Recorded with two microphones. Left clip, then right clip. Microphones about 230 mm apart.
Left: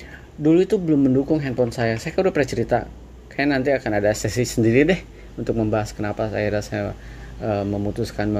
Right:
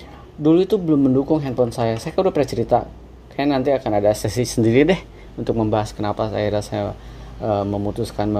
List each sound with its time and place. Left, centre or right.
0.4 s speech: centre